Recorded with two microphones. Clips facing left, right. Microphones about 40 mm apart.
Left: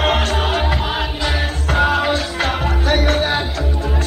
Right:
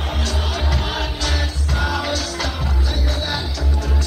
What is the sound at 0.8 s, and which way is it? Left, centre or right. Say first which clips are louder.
Music: left 3 dB; left.